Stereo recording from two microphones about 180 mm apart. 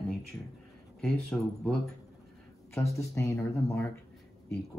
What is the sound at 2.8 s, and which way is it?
Speech, 15° left (ahead or behind).